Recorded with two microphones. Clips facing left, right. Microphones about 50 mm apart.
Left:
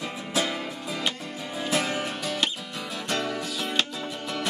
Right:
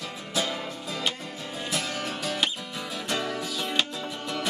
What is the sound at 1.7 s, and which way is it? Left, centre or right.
Music, left.